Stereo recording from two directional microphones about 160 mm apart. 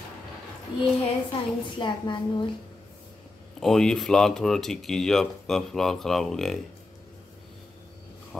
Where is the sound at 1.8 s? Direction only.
30° left (ahead or behind).